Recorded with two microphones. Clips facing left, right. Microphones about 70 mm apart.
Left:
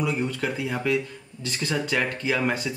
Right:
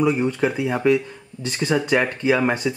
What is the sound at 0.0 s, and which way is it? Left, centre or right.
Speech, right.